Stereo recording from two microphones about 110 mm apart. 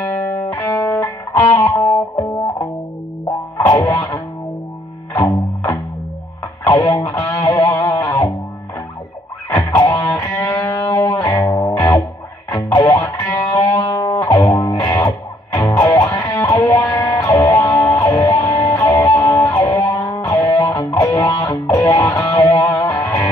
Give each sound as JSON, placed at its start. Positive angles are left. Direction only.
{"t": 0.5, "sound": "music", "side_deg": 25}
{"t": 3.6, "sound": "music", "side_deg": 25}
{"t": 6.7, "sound": "music", "side_deg": 30}
{"t": 9.5, "sound": "music", "side_deg": 30}